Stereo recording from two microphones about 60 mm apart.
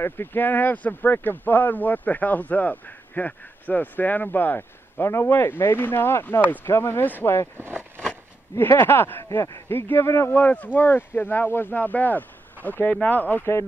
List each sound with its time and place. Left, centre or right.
0.0 s speech: left
9.2 s speech: left
9.7 s speech: left
10.3 s speech: left